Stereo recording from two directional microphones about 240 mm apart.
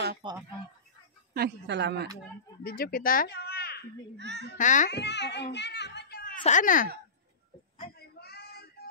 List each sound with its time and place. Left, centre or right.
0.2 s speech: right
1.3 s a woman's voice: right
2.6 s speech: left
4.2 s a woman's voice: right
4.6 s a child's voice: left
4.9 s a child's voice: left
7.9 s a sound: left